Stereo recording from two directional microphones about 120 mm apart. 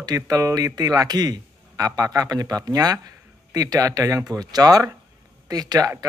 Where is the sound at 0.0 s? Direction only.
30° right (ahead or behind).